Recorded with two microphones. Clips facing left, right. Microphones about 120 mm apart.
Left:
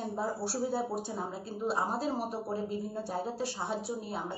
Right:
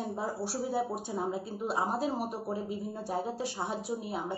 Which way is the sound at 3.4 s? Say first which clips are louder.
Even; 15° right (ahead or behind).